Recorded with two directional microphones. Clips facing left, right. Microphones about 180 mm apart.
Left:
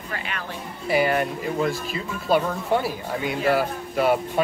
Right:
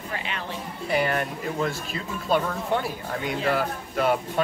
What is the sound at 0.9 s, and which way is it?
Speech, 5° left (ahead or behind).